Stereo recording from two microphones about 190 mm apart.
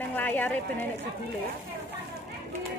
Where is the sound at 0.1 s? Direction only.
10° left (ahead or behind).